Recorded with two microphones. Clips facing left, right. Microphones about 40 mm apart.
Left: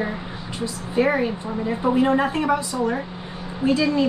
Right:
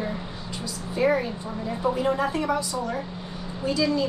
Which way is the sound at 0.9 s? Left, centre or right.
Left.